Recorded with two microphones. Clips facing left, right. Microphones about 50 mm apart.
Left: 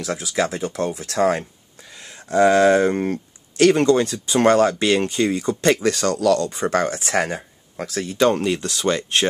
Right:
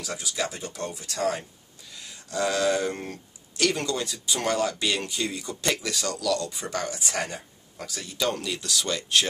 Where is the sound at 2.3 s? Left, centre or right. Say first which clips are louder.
Left 10 dB; left.